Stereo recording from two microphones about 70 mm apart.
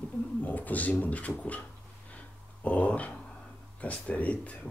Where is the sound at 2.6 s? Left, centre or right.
Left.